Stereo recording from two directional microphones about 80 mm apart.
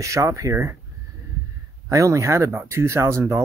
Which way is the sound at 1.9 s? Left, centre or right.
Right.